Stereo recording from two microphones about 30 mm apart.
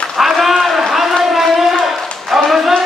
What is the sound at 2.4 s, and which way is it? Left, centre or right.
Music, centre.